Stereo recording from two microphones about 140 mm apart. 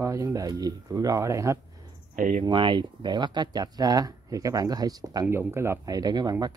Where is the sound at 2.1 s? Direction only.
70° right (ahead or behind).